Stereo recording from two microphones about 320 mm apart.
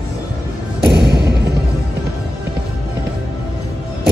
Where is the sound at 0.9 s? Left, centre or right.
Right.